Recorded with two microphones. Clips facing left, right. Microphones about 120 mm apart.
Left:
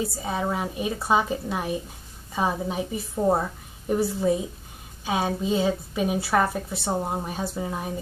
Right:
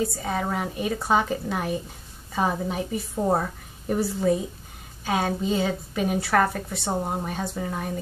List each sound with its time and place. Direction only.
0.0 s a woman's voice: 5° left (ahead or behind)
0.4 s a woman's voice: 15° left (ahead or behind)
0.7 s a woman's voice: 5° left (ahead or behind)